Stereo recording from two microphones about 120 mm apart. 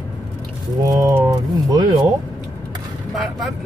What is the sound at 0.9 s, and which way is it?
Speech, 25° right (ahead or behind).